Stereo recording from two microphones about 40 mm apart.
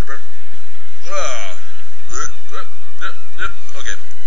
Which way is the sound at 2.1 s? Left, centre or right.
Centre.